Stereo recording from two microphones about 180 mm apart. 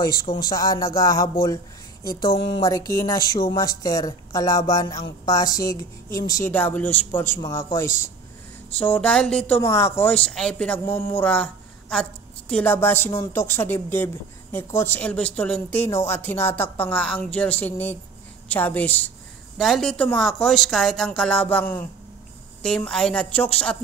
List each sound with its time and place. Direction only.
0.0 s a woman's voice: 20° left (ahead or behind); by 23.8 s 5° left (ahead or behind)